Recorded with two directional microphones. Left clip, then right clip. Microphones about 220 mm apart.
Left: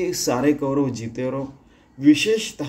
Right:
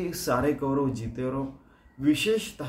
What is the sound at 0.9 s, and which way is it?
A man's voice, 5° right (ahead or behind).